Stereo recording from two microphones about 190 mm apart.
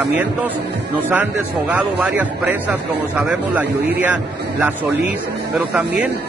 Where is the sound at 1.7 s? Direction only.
5° right (ahead or behind).